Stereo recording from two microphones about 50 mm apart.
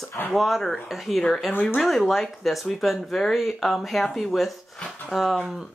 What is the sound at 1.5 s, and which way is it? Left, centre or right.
Speech, left.